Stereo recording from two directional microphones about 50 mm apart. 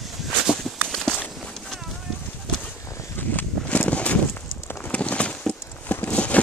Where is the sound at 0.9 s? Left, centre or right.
Centre.